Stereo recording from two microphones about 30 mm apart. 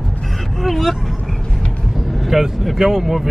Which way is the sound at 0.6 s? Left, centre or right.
Centre.